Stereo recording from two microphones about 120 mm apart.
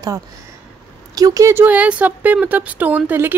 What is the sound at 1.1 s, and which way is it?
A woman's voice, 30° right (ahead or behind).